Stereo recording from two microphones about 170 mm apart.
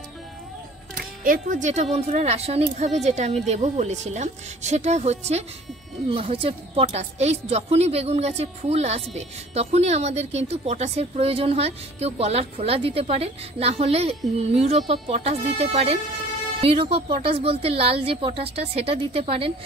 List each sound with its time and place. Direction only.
0.9 s a woman's voice: 55° right (ahead or behind); by 19.5 s 35° right (ahead or behind)